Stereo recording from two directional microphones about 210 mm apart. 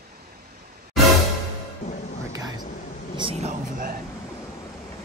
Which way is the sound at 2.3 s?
20° right (ahead or behind).